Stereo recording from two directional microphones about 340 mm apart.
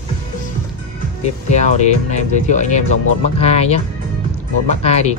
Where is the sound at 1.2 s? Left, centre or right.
Centre.